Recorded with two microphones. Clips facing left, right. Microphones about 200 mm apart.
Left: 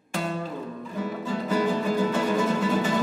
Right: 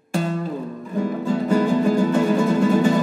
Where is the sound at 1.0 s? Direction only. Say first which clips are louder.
Right 8 dB; 45° right (ahead or behind).